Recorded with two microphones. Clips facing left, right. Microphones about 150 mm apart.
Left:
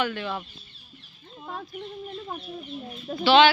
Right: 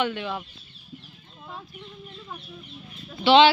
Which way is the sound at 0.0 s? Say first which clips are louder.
Right 1 dB; 20° right (ahead or behind).